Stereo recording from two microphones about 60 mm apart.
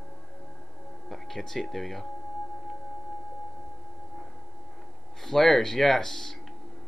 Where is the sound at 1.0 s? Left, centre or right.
Centre.